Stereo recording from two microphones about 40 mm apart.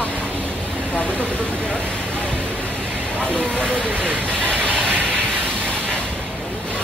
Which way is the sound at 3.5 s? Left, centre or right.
Right.